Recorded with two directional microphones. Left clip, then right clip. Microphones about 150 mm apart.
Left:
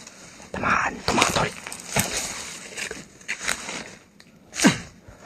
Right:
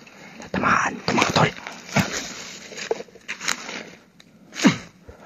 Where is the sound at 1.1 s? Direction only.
25° right (ahead or behind).